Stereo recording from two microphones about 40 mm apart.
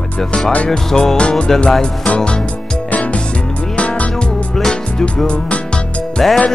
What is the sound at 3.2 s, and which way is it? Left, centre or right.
Music, left.